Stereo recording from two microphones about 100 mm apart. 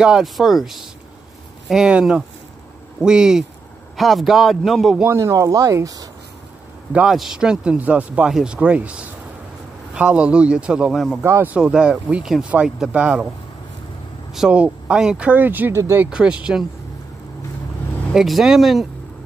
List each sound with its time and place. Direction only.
0.0 s a man's voice: 5° right (ahead or behind)
5.0 s speech: 30° right (ahead or behind)
6.9 s speech: 5° right (ahead or behind)
8.3 s a man's voice: 5° right (ahead or behind)
8.5 s speech: 15° right (ahead or behind)
11.2 s speech: 25° right (ahead or behind)
11.5 s speech: 10° right (ahead or behind)
14.3 s speech: 10° right (ahead or behind)
18.1 s a man's voice: 5° right (ahead or behind)